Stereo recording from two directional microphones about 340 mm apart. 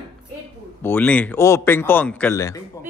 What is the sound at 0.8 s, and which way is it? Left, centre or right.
A man's voice, centre.